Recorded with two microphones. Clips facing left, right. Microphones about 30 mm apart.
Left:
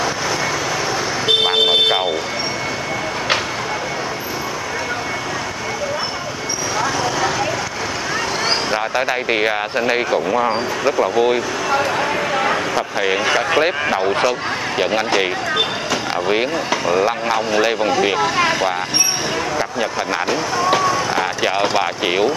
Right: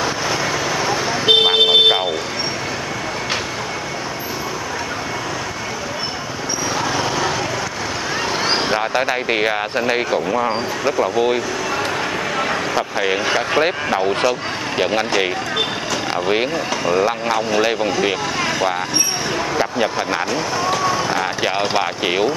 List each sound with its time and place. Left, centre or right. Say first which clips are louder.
0.8 s vehicle: right 4 dB; centre
6.8 s vehicle: left 2 dB; centre
8.5 s speech: right 2 dB; centre
18.2 s speech: left 4 dB; centre
19.5 s speech: right 2 dB; centre
20.8 s a sound: left 1 dB; centre
21.4 s speech: left 1 dB; centre